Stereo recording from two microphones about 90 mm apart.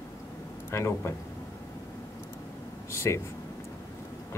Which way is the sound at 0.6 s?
30° left (ahead or behind).